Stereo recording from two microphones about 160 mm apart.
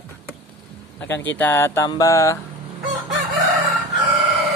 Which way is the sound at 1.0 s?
15° left (ahead or behind).